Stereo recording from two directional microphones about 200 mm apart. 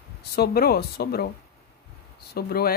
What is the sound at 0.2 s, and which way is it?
Speech, 50° left (ahead or behind).